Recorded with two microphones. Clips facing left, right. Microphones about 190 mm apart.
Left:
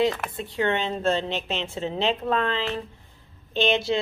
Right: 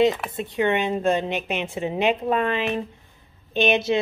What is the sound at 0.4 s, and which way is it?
A woman's voice, 20° right (ahead or behind).